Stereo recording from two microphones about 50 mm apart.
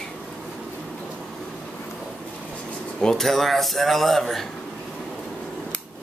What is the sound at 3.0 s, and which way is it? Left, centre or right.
Speech, centre.